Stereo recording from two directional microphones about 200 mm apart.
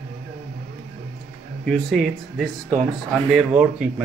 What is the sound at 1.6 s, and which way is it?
Speech, centre (ahead or behind).